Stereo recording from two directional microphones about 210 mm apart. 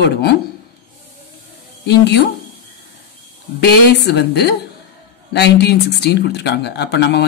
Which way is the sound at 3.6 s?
50° left (ahead or behind).